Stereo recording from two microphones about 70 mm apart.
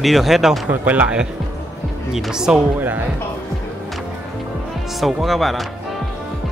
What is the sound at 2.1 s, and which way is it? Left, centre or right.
Speech, centre.